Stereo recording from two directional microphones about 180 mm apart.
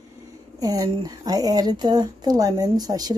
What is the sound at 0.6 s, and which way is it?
A woman's voice, 20° right (ahead or behind).